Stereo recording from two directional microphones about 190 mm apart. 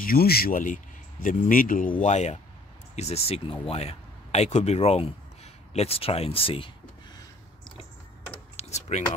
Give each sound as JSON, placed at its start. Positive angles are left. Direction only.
{"t": 0.0, "sound": "speech", "side_deg": 50}
{"t": 8.5, "sound": "computer keyboard", "side_deg": 35}